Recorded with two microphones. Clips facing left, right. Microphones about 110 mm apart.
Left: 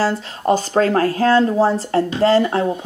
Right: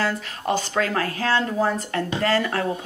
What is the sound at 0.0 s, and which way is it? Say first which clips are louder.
Speech: left 6 dB; 35° left (ahead or behind).